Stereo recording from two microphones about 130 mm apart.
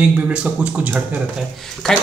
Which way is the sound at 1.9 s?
5° left (ahead or behind).